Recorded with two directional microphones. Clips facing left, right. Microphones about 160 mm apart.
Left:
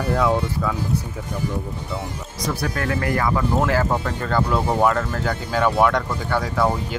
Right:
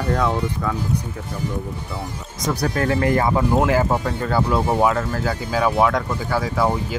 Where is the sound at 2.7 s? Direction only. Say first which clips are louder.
Right 6 dB; 25° right (ahead or behind).